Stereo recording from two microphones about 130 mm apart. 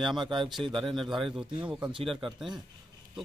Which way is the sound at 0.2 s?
35° right (ahead or behind).